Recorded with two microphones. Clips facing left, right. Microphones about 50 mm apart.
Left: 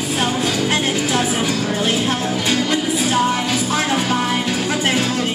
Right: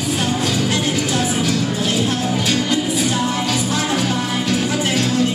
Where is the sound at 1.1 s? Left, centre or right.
Left.